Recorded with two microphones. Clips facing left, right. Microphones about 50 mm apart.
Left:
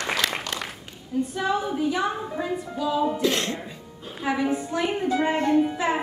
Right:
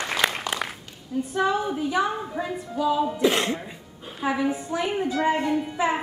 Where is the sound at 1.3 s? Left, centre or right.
Centre.